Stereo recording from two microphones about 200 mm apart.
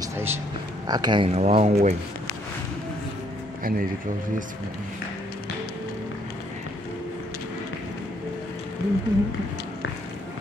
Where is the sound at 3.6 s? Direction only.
45° right (ahead or behind).